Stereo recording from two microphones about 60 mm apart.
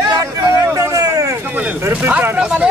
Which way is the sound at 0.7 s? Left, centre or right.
Right.